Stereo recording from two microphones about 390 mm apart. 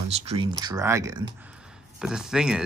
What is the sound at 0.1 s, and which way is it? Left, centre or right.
Speech, centre.